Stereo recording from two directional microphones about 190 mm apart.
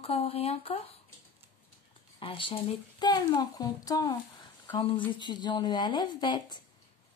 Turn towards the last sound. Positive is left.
turn(degrees=25)  # may be behind; listen again after turning